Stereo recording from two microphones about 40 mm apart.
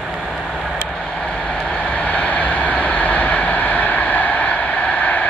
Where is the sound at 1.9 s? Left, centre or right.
Left.